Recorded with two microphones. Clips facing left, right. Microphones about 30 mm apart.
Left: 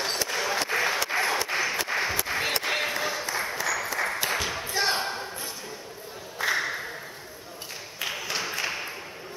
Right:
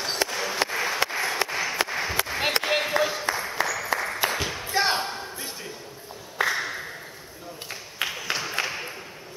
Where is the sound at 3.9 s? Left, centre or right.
Centre.